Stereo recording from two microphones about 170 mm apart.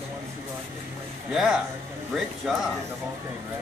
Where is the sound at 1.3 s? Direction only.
Centre (ahead or behind).